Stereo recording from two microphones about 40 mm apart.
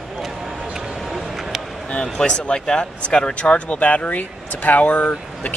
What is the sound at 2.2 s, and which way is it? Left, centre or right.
Speech, centre.